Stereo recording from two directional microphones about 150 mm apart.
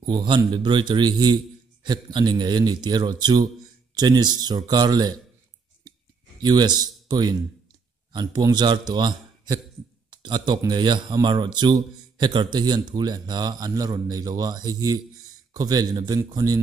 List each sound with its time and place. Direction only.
0.0 s speech: 30° right (ahead or behind)
6.4 s a man's voice: 30° right (ahead or behind)